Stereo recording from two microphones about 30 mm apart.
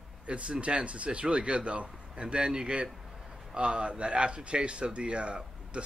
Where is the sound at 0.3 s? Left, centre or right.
Right.